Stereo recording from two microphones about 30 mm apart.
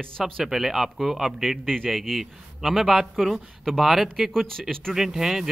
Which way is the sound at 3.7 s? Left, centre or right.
Centre.